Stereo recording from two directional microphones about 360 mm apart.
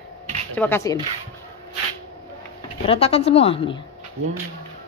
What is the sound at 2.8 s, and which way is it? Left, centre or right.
Speech, centre.